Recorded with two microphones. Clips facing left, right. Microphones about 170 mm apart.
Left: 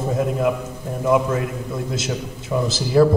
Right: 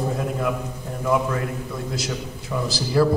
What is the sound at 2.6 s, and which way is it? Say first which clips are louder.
Speech: left 4 dB; 20° left (ahead or behind).